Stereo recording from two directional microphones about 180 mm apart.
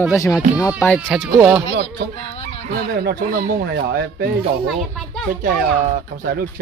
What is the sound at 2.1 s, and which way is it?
Fowl, 35° left (ahead or behind).